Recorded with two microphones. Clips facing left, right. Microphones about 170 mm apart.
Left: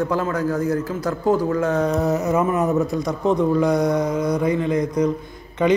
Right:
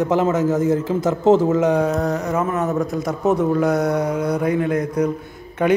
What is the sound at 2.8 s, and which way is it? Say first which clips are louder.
A man's voice: right 1 dB; 5° right (ahead or behind).